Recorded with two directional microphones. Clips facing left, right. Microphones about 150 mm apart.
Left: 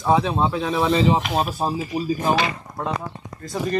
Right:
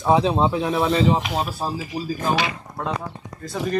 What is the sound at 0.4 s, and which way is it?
Speech, 10° right (ahead or behind).